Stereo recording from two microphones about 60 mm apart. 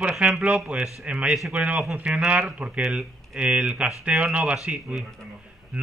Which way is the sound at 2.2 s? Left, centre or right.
Right.